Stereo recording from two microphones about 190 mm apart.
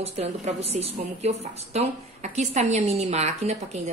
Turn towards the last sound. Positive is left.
turn(degrees=-35)  # may be behind; listen again after turning